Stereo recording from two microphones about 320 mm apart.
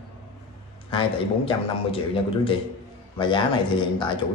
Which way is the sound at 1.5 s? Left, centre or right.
Centre.